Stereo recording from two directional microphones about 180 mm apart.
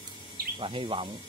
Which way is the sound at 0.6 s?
30° right (ahead or behind).